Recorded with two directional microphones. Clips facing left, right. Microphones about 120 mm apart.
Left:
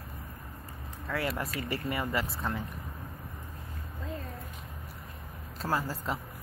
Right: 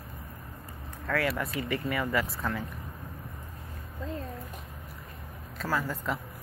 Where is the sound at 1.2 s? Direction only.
25° left (ahead or behind).